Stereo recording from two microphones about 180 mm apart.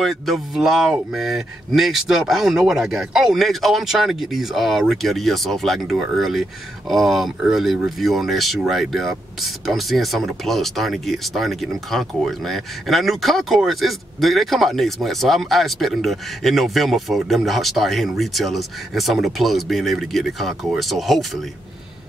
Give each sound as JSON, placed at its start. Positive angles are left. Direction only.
{"t": 0.0, "sound": "speech", "side_deg": 0}